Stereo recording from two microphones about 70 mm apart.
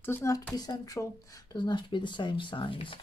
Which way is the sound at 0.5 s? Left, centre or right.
Left.